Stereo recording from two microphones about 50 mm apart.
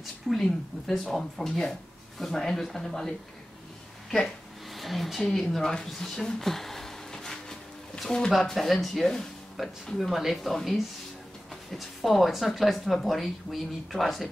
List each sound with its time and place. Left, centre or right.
0.3 s speech: centre
4.1 s a sound: centre
8.5 s speech: centre